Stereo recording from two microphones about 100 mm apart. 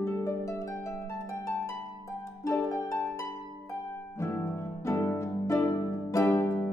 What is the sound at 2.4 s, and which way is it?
Harp, 30° left (ahead or behind).